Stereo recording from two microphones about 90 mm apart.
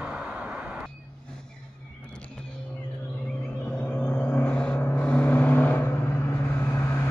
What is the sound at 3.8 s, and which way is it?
Vehicle, 20° left (ahead or behind).